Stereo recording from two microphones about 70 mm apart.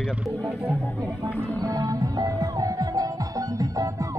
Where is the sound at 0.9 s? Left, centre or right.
Right.